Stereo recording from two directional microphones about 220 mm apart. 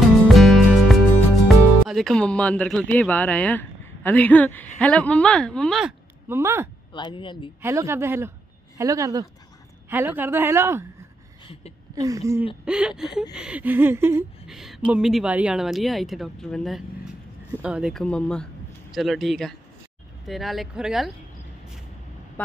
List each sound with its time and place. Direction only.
0.3 s music: centre (ahead or behind)
1.5 s speech: centre (ahead or behind)
4.7 s a sound: 5° left (ahead or behind); by 6.7 s 10° right (ahead or behind)
6.9 s a man's voice: 20° left (ahead or behind)
7.6 s a woman's voice: 10° right (ahead or behind)
11.9 s a woman's voice: 15° right (ahead or behind)
12.6 s a sound: 5° right (ahead or behind)
17.5 s speech: 5° right (ahead or behind)
20.2 s a sound: centre (ahead or behind)